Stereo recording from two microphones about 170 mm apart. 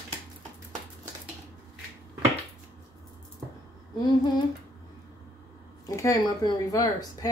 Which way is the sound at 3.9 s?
25° left (ahead or behind).